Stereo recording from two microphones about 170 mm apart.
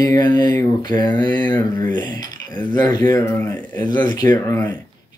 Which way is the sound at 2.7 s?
25° left (ahead or behind).